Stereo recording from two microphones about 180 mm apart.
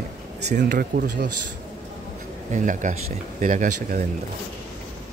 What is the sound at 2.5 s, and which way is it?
Speech, 45° right (ahead or behind).